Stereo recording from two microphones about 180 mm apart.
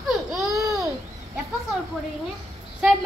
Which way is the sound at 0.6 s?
Centre (ahead or behind).